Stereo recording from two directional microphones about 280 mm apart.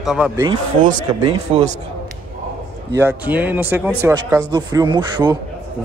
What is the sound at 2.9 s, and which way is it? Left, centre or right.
Speech, centre.